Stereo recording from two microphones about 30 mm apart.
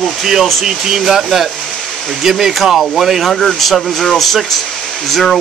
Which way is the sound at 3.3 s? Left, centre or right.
Centre.